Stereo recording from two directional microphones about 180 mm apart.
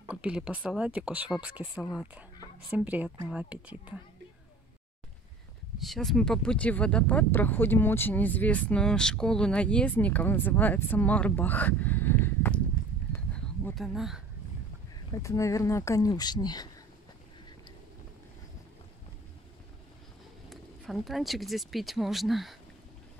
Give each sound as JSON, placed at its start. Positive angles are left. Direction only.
{"t": 0.1, "sound": "speech", "side_deg": -5}
{"t": 5.8, "sound": "speech", "side_deg": 0}
{"t": 13.1, "sound": "a sound", "side_deg": 10}
{"t": 13.7, "sound": "speech", "side_deg": 0}
{"t": 15.0, "sound": "speech", "side_deg": 15}
{"t": 20.4, "sound": "speech", "side_deg": 0}